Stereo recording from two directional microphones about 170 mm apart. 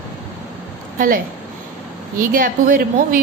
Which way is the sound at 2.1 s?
55° right (ahead or behind).